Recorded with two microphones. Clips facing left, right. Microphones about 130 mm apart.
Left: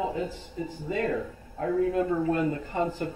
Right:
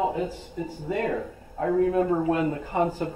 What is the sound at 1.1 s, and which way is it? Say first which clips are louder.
A man's voice: right 1 dB; 50° right (ahead or behind).